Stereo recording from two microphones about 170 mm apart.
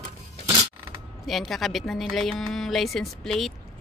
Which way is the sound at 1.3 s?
Centre (ahead or behind).